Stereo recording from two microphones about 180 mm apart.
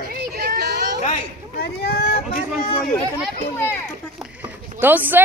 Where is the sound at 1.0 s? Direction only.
40° left (ahead or behind).